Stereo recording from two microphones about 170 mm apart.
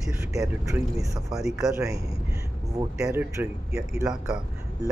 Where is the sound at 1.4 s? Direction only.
Centre (ahead or behind).